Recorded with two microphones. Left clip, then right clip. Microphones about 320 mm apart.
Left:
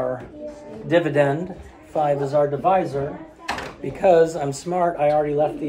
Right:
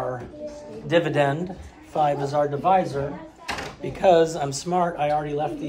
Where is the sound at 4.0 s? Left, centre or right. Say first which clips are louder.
Left 2 dB; centre.